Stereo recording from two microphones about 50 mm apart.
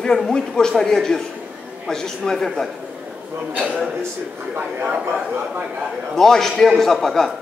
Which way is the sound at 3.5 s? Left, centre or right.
Right.